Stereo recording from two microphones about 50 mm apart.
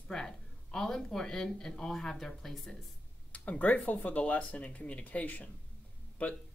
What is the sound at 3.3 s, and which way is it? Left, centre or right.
Speech, left.